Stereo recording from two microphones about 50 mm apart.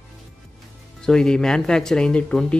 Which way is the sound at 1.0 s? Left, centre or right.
Centre.